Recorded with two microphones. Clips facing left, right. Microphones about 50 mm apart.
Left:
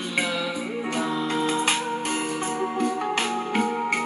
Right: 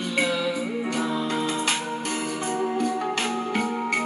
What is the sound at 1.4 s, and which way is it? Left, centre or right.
Music, left.